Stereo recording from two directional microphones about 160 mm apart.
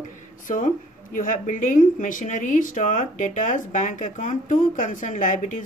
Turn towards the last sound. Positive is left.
turn(degrees=55)  # may be behind; listen again after turning